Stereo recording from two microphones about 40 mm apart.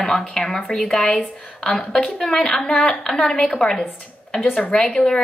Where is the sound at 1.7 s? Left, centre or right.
Left.